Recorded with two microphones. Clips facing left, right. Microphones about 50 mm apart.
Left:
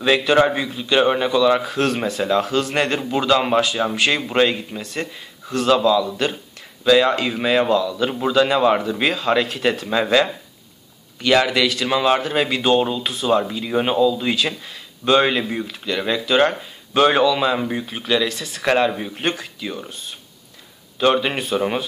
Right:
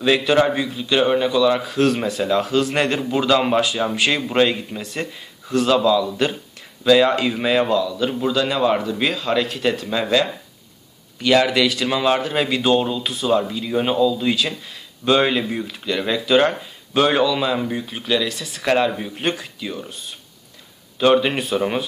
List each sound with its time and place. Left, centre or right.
0.0 s a man's voice: centre
11.1 s a man's voice: centre
18.4 s a man's voice: centre
18.7 s speech: centre
21.0 s a man's voice: centre